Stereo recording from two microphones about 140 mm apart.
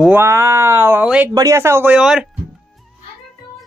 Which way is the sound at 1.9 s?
5° right (ahead or behind).